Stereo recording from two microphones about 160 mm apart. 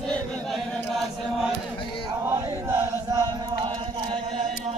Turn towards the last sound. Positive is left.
turn(degrees=-35)  # may be behind; listen again after turning